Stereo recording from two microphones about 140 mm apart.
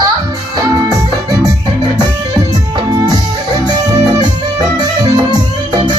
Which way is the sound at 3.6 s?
30° right (ahead or behind).